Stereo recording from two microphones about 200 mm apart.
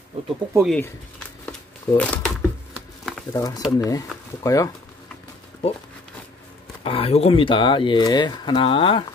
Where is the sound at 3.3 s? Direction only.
15° left (ahead or behind).